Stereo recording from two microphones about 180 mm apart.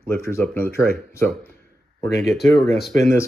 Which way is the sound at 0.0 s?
10° left (ahead or behind).